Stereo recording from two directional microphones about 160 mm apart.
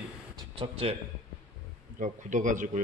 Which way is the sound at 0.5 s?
35° right (ahead or behind).